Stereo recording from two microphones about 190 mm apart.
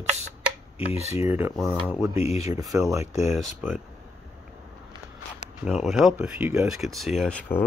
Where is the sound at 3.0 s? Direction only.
35° left (ahead or behind).